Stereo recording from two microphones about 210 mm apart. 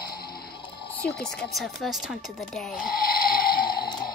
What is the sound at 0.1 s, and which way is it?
Music, 45° left (ahead or behind).